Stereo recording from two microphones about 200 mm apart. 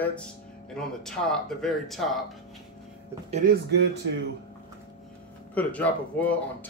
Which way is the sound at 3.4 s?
45° right (ahead or behind).